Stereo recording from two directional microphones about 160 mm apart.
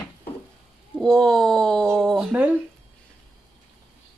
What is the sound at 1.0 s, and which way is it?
Speech, 5° left (ahead or behind).